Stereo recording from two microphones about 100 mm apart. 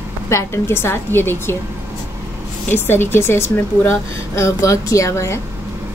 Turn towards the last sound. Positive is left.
turn(degrees=30)  # may be behind; listen again after turning